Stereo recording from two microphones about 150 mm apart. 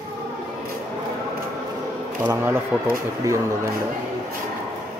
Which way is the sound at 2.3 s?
15° right (ahead or behind).